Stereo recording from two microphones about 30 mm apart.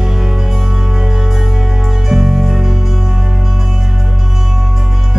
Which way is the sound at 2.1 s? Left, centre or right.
Centre.